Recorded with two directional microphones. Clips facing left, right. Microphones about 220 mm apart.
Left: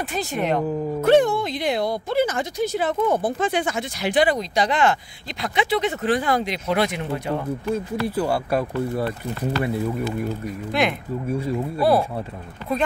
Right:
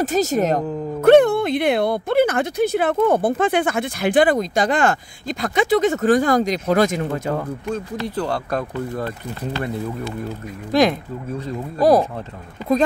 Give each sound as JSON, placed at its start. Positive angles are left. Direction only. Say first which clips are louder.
{"t": 0.0, "sound": "speech", "louder": "right 7 dB", "side_deg": -40}
{"t": 1.0, "sound": "speech", "louder": "right 5 dB", "side_deg": -60}
{"t": 7.6, "sound": "speech", "louder": "left 1 dB", "side_deg": 10}
{"t": 10.7, "sound": "speech", "louder": "right 6 dB", "side_deg": -35}
{"t": 11.2, "sound": "speech", "louder": "left 3 dB", "side_deg": 10}